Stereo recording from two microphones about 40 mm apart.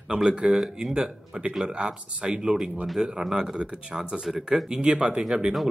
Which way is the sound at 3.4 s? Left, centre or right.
Right.